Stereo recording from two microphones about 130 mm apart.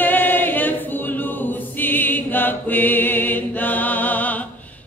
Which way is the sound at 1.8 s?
15° left (ahead or behind).